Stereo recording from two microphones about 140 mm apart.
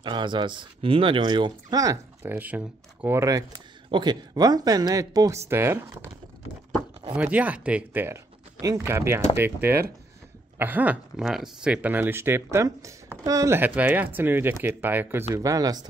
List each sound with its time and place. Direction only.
0.0 s speech: 35° right (ahead or behind); by 6.1 s 15° right (ahead or behind)
7.2 s speech: 10° right (ahead or behind)
13.6 s speech: 10° right (ahead or behind); by 15.9 s 25° right (ahead or behind)